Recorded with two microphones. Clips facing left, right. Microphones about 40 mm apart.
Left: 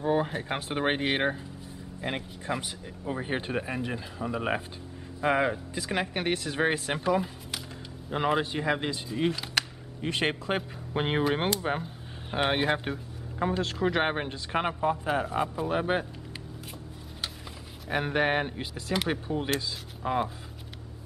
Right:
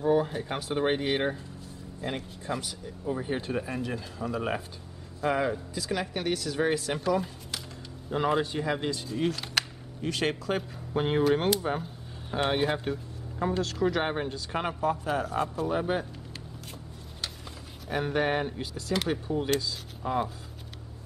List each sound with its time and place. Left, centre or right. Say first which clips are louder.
0.0 s speech: right 2 dB; left
5.2 s speech: left 2 dB; left
8.4 s speech: left 1 dB; left
10.0 s speech: even; left
15.7 s speech: left 2 dB; left
17.8 s speech: left 1 dB; left